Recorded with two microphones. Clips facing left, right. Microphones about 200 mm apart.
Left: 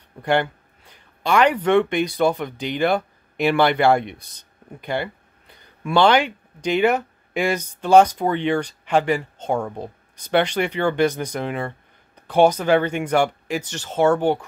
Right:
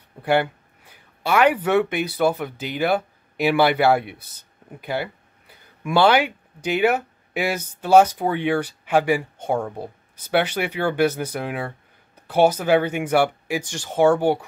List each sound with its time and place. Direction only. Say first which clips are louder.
0.2 s a man's voice: even; 5° right (ahead or behind)